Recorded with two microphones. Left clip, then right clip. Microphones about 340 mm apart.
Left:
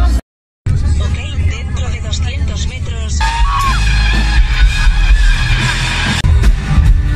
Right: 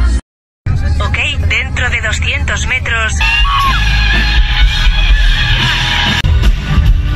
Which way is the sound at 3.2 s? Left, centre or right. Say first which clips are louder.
Right 2 dB; centre.